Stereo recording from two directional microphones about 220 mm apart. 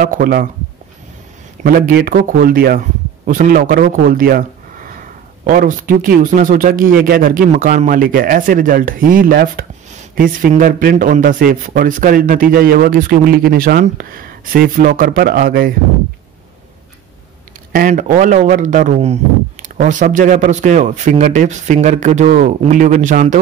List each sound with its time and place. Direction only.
0.0 s speech: 40° right (ahead or behind)
1.6 s speech: 40° right (ahead or behind)
17.7 s speech: 35° right (ahead or behind)